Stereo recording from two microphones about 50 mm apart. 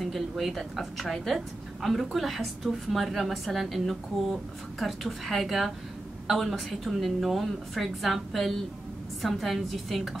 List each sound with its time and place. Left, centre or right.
0.0 s a woman's voice: centre